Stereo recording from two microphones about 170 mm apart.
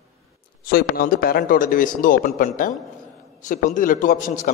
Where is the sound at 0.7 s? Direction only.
60° left (ahead or behind).